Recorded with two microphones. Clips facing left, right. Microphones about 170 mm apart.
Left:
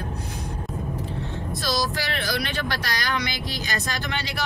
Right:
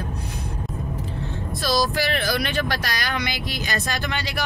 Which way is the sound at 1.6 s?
55° right (ahead or behind).